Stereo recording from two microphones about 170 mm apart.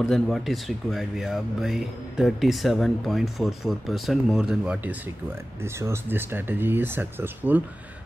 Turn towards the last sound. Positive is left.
turn(degrees=-10)  # may be behind; listen again after turning